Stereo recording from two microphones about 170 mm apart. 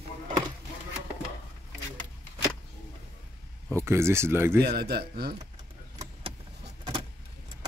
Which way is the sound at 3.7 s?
15° right (ahead or behind).